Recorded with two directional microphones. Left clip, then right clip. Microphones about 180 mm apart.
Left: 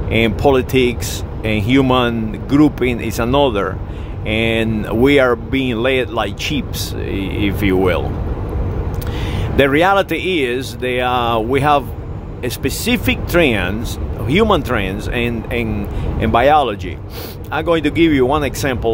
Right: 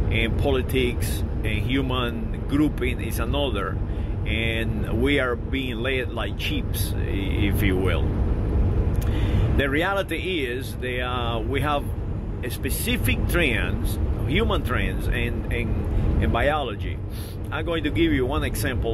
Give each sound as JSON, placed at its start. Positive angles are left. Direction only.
{"t": 0.1, "sound": "speech", "side_deg": 40}
{"t": 9.3, "sound": "speech", "side_deg": 45}